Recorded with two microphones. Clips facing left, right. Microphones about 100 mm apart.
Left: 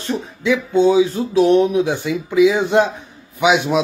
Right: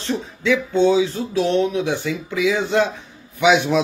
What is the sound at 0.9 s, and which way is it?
Speech, 25° left (ahead or behind).